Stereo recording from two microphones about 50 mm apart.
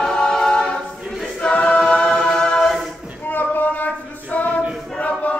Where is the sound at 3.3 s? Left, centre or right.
Left.